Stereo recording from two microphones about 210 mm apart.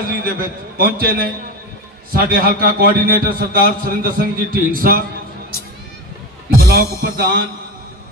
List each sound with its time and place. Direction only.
0.2 s a man's voice: 45° right (ahead or behind)
6.7 s a man's voice: 45° right (ahead or behind)